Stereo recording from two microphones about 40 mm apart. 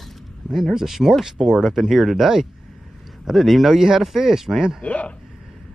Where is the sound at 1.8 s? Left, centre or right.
Centre.